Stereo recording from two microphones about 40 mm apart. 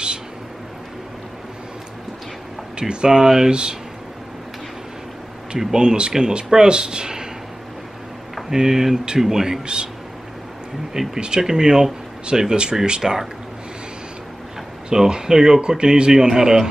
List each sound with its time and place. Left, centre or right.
2.8 s speech: right
5.6 s speech: centre
8.5 s speech: centre
11.1 s speech: right
14.9 s speech: centre